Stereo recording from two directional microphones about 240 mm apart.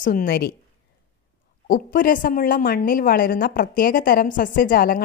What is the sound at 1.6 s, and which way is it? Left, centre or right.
A woman's voice, left.